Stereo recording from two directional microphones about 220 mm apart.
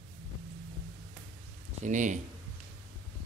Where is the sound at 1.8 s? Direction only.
35° right (ahead or behind).